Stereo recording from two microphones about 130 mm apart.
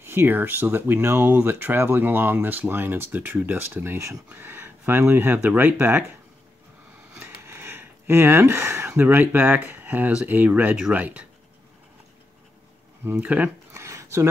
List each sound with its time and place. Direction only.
0.0 s speech: 15° right (ahead or behind)
7.2 s speech: 15° right (ahead or behind)
13.0 s a sound: 15° right (ahead or behind)